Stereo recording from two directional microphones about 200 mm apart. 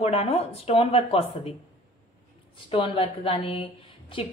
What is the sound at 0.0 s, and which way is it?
A woman's voice, 30° left (ahead or behind).